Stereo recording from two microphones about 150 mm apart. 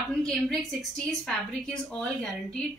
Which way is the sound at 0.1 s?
5° left (ahead or behind).